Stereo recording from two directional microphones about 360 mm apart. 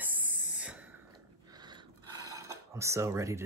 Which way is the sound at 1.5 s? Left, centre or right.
Centre.